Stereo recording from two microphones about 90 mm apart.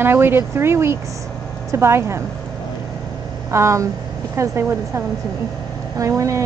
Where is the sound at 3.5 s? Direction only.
35° right (ahead or behind).